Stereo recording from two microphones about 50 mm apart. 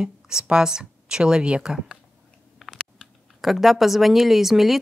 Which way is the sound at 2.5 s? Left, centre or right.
Centre.